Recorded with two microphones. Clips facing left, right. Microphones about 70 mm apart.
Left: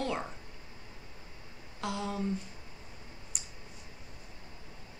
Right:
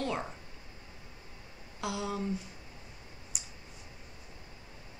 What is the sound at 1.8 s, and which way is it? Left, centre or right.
Speech, centre.